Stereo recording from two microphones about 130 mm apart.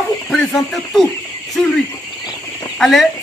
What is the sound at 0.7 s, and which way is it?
Speech, centre (ahead or behind).